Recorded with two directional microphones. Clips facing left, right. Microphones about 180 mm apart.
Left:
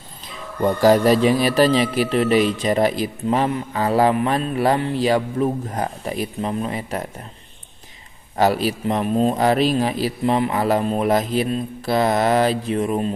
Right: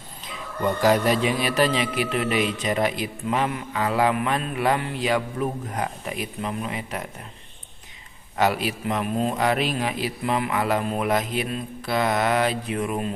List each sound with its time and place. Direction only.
0.7 s a man's voice: 35° left (ahead or behind)
8.4 s a man's voice: 35° left (ahead or behind)